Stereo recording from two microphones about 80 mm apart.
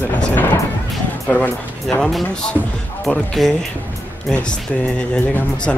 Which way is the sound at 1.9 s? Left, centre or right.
Centre.